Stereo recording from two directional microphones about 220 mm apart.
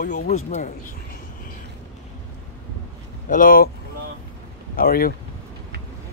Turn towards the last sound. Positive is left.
turn(degrees=40)  # may be behind; listen again after turning